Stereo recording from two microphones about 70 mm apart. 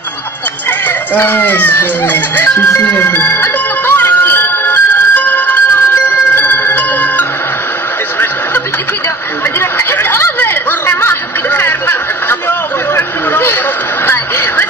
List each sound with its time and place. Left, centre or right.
0.7 s speech: left
2.8 s music: left
9.6 s a sound: left